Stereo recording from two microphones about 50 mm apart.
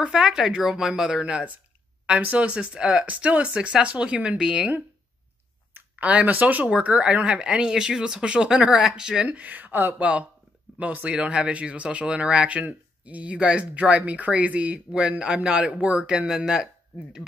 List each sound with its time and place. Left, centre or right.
0.0 s speech: centre
1.2 s speech: right
5.9 s speech: right
9.3 s speech: right; by 16.6 s centre